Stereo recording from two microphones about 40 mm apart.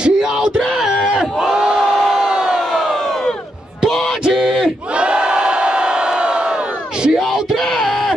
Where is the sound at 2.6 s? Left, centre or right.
Centre.